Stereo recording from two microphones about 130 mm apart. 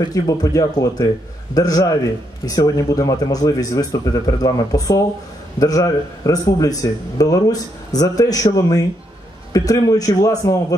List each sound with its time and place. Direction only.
0.0 s speech: 25° left (ahead or behind)